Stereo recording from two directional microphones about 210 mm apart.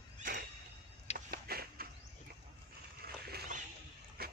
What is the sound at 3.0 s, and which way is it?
Vehicle, 45° right (ahead or behind).